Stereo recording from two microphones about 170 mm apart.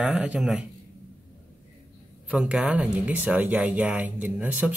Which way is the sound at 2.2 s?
5° right (ahead or behind).